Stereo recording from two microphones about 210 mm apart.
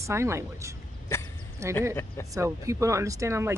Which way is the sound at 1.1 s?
15° left (ahead or behind).